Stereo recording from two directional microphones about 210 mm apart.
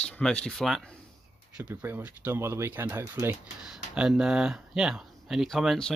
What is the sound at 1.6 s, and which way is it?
Speech, 10° right (ahead or behind).